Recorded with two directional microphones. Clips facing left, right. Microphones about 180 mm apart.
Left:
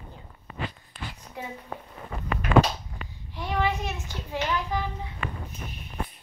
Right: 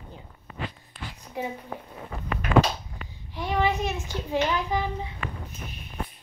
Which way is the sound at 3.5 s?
15° right (ahead or behind).